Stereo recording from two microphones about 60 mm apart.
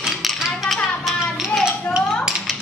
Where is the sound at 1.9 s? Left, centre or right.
Left.